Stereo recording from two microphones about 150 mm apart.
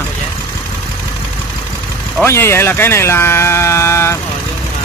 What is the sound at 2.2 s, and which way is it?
Speech, 15° left (ahead or behind).